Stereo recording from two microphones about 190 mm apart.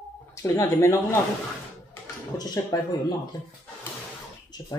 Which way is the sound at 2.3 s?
20° left (ahead or behind).